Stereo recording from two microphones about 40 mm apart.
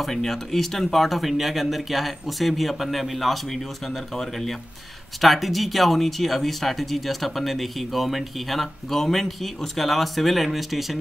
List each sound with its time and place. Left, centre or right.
0.1 s speech: centre